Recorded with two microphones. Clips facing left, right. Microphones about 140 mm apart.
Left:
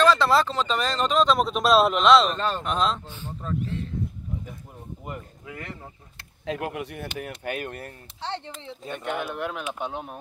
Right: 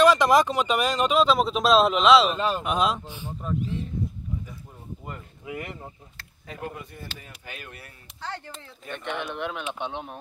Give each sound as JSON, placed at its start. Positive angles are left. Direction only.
{"t": 0.0, "sound": "speech", "side_deg": -15}
{"t": 5.4, "sound": "speech", "side_deg": -20}
{"t": 6.4, "sound": "speech", "side_deg": 90}
{"t": 8.2, "sound": "speech", "side_deg": 25}
{"t": 8.9, "sound": "speech", "side_deg": 5}